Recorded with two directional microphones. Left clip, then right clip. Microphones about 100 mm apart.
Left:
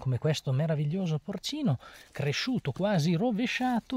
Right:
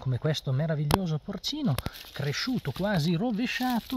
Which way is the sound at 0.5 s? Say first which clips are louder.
Right 4 dB; 15° left (ahead or behind).